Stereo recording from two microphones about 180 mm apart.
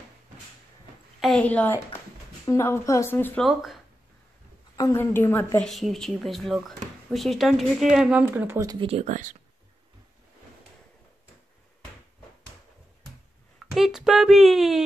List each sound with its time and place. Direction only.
1.2 s speech: 5° left (ahead or behind)
3.4 s speech: centre (ahead or behind)
4.7 s speech: 15° left (ahead or behind)
5.7 s speech: centre (ahead or behind); by 8.8 s 20° right (ahead or behind)
8.8 s speech: 35° right (ahead or behind)
13.7 s a sound: centre (ahead or behind)